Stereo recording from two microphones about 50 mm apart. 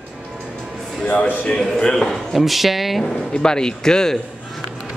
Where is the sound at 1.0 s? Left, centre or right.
Left.